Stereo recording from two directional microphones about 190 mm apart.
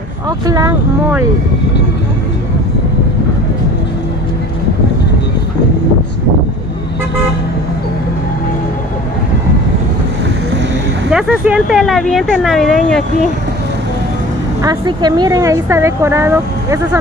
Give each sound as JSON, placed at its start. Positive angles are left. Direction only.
{"t": 0.5, "sound": "speech", "side_deg": -20}
{"t": 11.1, "sound": "speech", "side_deg": -5}
{"t": 14.6, "sound": "speech", "side_deg": -20}